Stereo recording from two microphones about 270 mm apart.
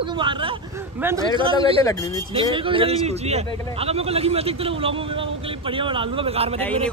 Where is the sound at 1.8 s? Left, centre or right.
Centre.